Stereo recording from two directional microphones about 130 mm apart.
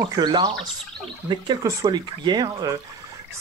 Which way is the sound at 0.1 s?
35° right (ahead or behind).